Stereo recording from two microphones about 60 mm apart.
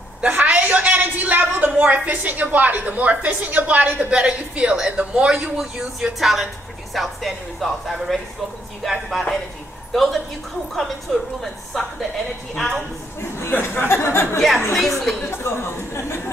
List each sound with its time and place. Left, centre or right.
0.2 s a sound: right
1.8 s a woman's voice: right
5.3 s a woman's voice: centre
13.4 s speech: left
14.7 s a woman's voice: centre
15.2 s speech: left